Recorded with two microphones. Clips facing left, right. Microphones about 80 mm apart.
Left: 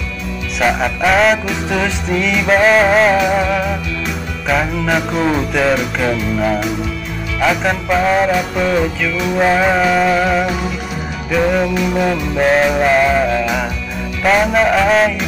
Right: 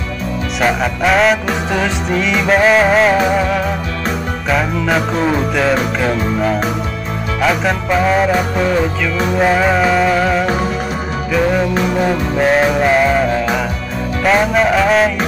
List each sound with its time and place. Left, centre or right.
0.6 s music: centre
4.5 s music: centre
7.4 s music: centre
9.4 s music: centre
11.7 s music: right
12.4 s music: centre